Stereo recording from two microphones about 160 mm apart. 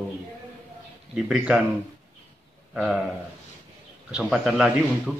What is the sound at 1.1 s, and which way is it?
Speech, 5° right (ahead or behind).